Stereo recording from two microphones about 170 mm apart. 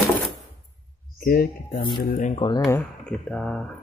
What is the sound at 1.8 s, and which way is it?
Speech, 25° left (ahead or behind).